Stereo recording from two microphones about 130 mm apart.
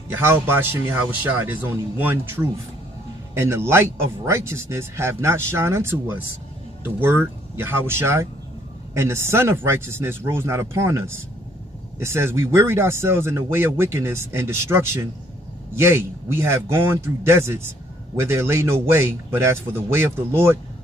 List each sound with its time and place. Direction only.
0.1 s a man's voice: 20° right (ahead or behind)